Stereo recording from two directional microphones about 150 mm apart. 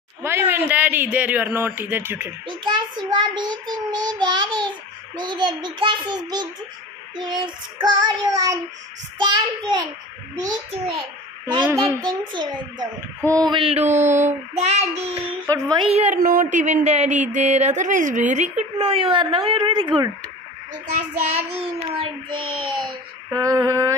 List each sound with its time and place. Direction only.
0.2 s a man's voice: 15° right (ahead or behind)
2.4 s child singing: 30° right (ahead or behind)
10.7 s a child's voice: 35° right (ahead or behind)
11.6 s a child's voice: 10° right (ahead or behind)
12.0 s child singing: 30° right (ahead or behind)
13.5 s a woman's voice: 35° right (ahead or behind)
16.2 s a woman's voice: 70° right (ahead or behind); by 20.1 s 30° right (ahead or behind)
21.3 s child singing: 40° right (ahead or behind); by 24.0 s 20° right (ahead or behind)